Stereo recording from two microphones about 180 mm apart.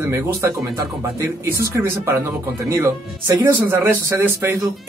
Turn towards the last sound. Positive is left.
turn(degrees=-10)  # may be behind; listen again after turning